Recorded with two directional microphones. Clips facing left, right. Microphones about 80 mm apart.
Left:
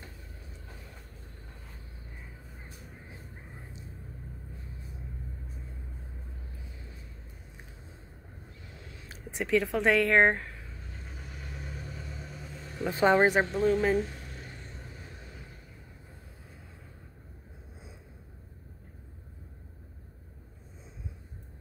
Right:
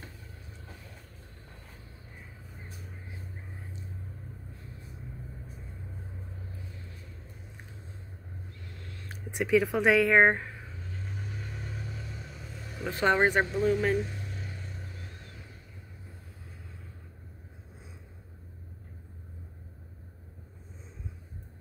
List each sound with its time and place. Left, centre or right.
8.6 s a sound: centre
9.1 s speech: centre
11.1 s vehicle: centre
12.7 s speech: centre
13.2 s speech: centre